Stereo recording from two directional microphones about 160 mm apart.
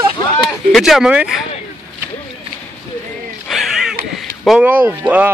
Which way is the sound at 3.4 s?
Centre (ahead or behind).